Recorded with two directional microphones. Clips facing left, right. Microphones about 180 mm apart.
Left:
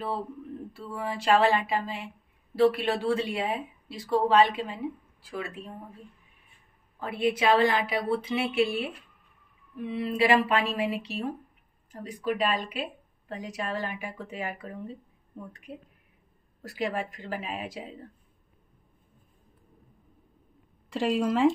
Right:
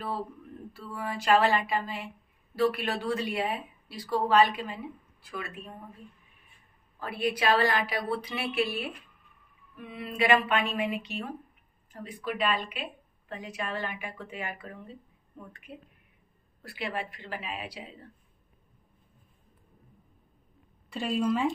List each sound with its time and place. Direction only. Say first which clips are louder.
0.7 s a woman's voice: left 1 dB; 25° left (ahead or behind)
7.0 s a woman's voice: left 3 dB; 20° left (ahead or behind); by 17.9 s 45° left (ahead or behind)
20.9 s speech: left 2 dB; 90° left